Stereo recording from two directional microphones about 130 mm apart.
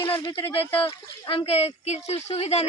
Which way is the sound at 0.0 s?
40° left (ahead or behind).